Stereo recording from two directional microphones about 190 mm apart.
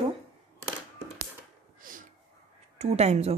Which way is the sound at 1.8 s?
45° right (ahead or behind).